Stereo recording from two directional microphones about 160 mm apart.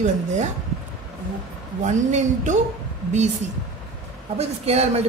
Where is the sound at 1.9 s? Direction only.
50° right (ahead or behind).